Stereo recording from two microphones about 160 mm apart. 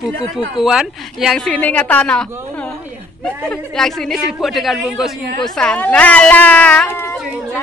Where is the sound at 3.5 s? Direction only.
5° left (ahead or behind).